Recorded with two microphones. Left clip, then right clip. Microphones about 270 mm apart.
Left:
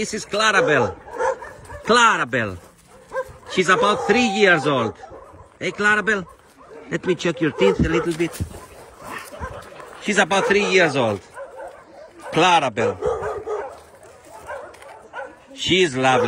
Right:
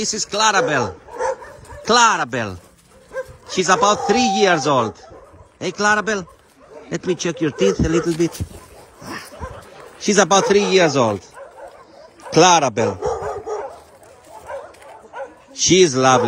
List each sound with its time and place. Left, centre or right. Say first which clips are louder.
0.0 s speech: right 2 dB; centre
1.1 s bow-wow: right 1 dB; left
1.9 s speech: right 1 dB; centre
10.5 s speech: right 2 dB; centre
12.4 s dog: right 4 dB; centre
15.5 s a man's voice: right 5 dB; right